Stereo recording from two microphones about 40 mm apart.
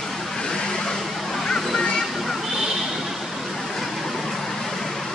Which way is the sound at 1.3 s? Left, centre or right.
Centre.